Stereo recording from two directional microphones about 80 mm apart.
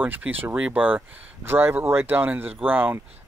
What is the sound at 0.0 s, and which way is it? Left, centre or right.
Speech, right.